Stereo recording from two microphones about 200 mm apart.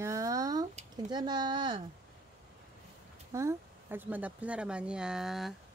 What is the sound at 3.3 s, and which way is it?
Speech, 10° right (ahead or behind).